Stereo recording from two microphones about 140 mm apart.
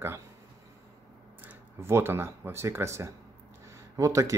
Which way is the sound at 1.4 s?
20° right (ahead or behind).